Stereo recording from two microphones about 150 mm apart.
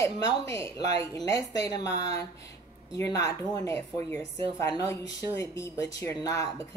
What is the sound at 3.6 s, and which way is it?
Speech, 20° left (ahead or behind).